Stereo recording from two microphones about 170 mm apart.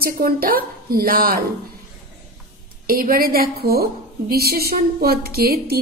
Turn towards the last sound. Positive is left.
turn(degrees=-65)  # may be behind; listen again after turning